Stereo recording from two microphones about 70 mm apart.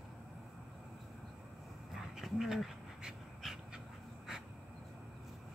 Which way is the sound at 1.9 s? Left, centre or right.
Centre.